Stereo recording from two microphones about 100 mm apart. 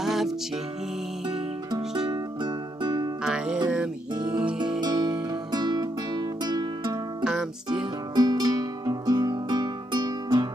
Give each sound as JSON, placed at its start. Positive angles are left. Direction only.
{"t": 0.0, "sound": "music", "side_deg": -5}
{"t": 1.7, "sound": "music", "side_deg": -45}
{"t": 3.6, "sound": "music", "side_deg": -10}
{"t": 4.1, "sound": "music", "side_deg": -45}